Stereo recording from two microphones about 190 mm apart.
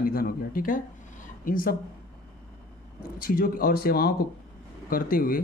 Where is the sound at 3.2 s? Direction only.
50° left (ahead or behind).